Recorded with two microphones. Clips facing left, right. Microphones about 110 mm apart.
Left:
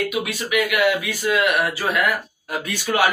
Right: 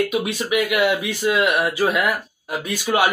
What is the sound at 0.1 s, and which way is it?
A man's voice, 30° right (ahead or behind).